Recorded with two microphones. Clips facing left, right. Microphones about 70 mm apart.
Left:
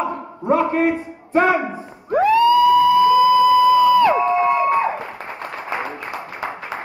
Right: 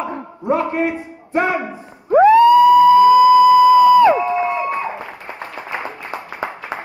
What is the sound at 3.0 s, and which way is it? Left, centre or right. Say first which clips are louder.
Crowd: right 4 dB; centre.